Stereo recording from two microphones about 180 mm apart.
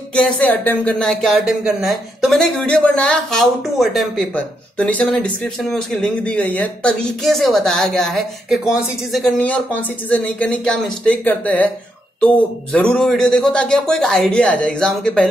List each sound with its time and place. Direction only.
0.1 s speech: 5° left (ahead or behind)